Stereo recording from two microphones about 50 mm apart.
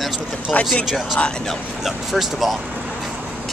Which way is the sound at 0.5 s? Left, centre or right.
Left.